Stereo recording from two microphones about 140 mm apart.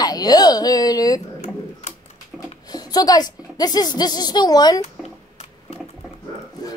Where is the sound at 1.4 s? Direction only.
50° left (ahead or behind).